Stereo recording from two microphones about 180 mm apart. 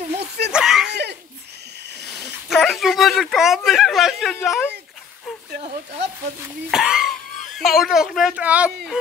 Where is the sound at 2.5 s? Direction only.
Centre (ahead or behind).